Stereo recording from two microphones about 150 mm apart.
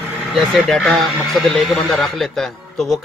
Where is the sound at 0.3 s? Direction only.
Centre (ahead or behind).